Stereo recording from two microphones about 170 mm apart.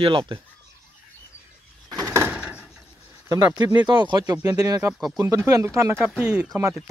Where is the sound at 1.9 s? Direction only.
20° right (ahead or behind).